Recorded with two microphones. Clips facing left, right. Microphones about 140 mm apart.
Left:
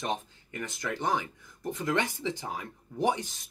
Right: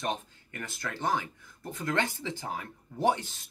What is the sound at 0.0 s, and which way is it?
Speech, 15° left (ahead or behind).